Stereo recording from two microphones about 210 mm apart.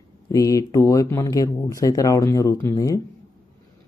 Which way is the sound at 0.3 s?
15° left (ahead or behind).